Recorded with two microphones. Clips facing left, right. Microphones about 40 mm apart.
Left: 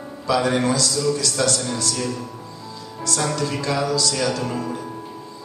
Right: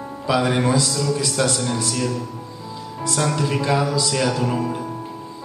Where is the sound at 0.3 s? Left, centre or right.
Centre.